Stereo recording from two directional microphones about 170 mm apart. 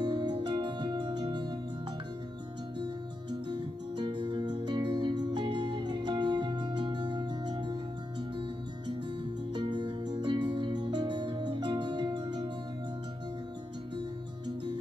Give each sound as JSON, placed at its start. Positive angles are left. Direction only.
{"t": 0.0, "sound": "music", "side_deg": -25}
{"t": 3.4, "sound": "music", "side_deg": -25}
{"t": 9.6, "sound": "music", "side_deg": -25}